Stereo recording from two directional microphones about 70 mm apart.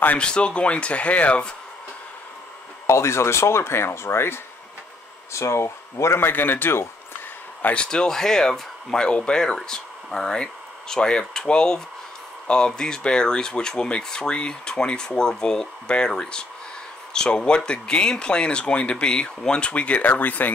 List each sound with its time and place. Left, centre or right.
0.2 s speech: centre
2.9 s speech: left
7.6 s speech: centre